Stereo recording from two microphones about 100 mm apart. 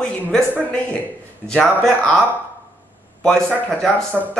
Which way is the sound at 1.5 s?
5° left (ahead or behind).